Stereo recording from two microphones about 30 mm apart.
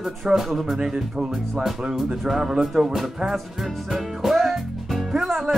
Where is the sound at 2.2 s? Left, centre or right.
Centre.